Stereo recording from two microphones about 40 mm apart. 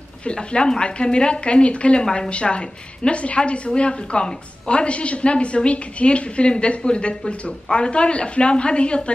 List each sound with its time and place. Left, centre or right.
0.2 s a woman's voice: left